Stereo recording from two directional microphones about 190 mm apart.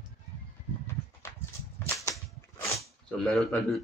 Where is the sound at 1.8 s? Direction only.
15° left (ahead or behind).